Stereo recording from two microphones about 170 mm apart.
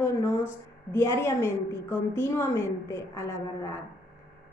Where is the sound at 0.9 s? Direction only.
15° left (ahead or behind).